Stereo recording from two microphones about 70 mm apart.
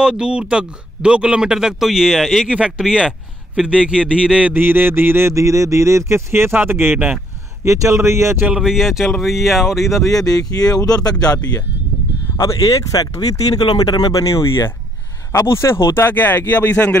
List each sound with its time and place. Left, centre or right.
0.0 s speech: centre
4.6 s speech: right
5.3 s speech: right
7.6 s speech: right
8.5 s speech: centre
10.0 s speech: left
13.2 s speech: left
14.2 s speech: left
16.2 s speech: left